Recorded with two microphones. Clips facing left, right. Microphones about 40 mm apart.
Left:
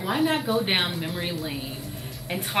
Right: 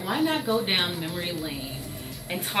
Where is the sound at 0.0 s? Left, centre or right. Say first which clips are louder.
Left 1 dB; centre.